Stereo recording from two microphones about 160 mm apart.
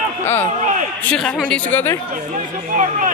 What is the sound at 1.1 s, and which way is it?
Speech, 5° left (ahead or behind).